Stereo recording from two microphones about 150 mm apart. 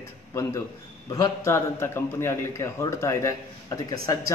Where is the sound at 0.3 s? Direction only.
20° left (ahead or behind).